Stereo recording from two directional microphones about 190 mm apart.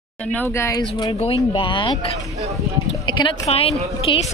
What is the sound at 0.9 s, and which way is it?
A woman's voice, 25° left (ahead or behind).